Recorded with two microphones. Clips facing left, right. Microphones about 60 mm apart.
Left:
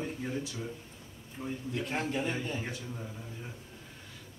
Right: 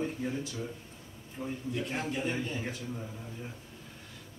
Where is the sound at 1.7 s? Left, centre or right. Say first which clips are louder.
Left 1 dB; left.